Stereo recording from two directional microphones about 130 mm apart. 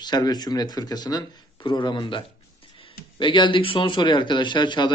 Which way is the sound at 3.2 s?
40° left (ahead or behind).